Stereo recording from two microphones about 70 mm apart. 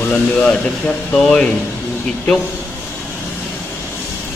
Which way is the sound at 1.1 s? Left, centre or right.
Centre.